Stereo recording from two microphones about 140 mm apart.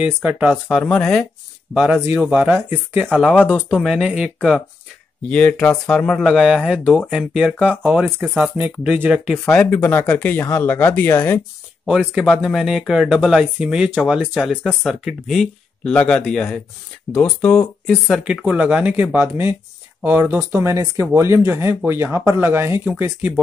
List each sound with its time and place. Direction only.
0.0 s speech: 10° right (ahead or behind)
0.7 s speech: 5° left (ahead or behind)
2.2 s speech: 15° right (ahead or behind)
3.1 s speech: 5° left (ahead or behind)
3.8 s speech: 5° right (ahead or behind)
6.8 s speech: 10° left (ahead or behind)
7.1 s speech: 5° right (ahead or behind)
9.5 s speech: 15° left (ahead or behind)
11.9 s speech: centre (ahead or behind)
18.2 s speech: 5° right (ahead or behind)